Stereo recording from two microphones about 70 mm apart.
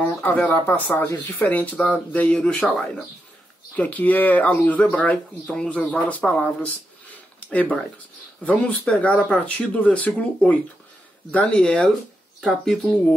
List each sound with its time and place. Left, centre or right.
0.0 s a sound: left
0.5 s speech: left
1.5 s speech: left
3.7 s speech: left
7.3 s a sound: left
8.5 s speech: centre